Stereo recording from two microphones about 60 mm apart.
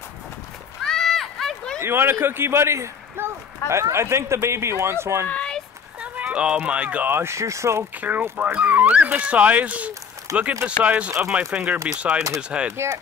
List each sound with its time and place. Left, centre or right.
0.8 s a sound: centre
1.8 s speech: right
5.3 s a sound: centre
5.9 s speech: centre
7.1 s speech: right
7.3 s speech: right
8.0 s speech: right
10.3 s speech: right
10.8 s speech: right
12.7 s speech: right